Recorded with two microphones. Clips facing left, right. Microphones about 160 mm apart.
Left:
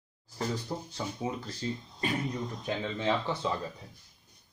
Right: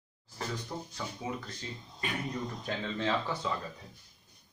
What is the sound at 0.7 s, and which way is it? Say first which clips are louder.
Speech: left 3 dB; 25° left (ahead or behind).